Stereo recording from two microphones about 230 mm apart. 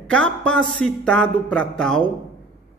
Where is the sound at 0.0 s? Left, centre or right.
Centre.